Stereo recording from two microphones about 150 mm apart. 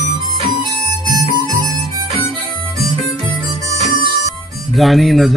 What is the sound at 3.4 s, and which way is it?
Music, 25° right (ahead or behind).